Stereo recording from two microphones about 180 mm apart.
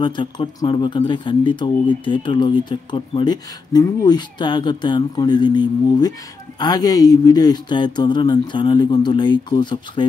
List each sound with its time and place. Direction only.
0.0 s speech: 25° left (ahead or behind)